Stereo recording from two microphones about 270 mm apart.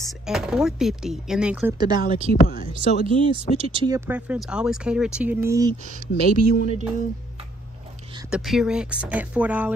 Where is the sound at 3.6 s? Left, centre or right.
Centre.